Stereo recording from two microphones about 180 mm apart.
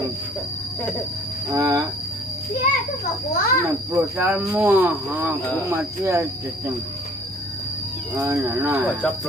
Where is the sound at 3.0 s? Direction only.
55° left (ahead or behind).